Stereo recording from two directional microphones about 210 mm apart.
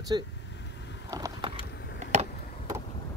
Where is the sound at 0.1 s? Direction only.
20° right (ahead or behind).